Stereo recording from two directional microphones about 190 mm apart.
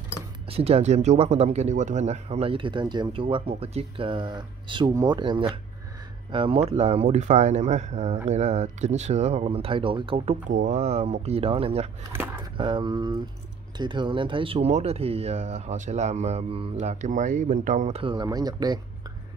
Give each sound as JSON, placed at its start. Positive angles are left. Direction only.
{"t": 0.5, "sound": "speech", "side_deg": -30}